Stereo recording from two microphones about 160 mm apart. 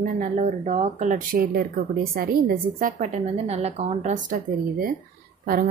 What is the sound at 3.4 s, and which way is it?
A woman's voice, 40° right (ahead or behind).